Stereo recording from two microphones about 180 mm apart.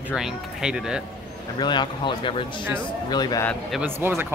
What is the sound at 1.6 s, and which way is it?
Speech, 25° left (ahead or behind).